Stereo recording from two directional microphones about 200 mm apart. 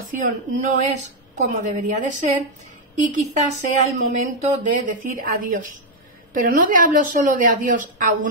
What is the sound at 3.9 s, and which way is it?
Speech, 40° right (ahead or behind).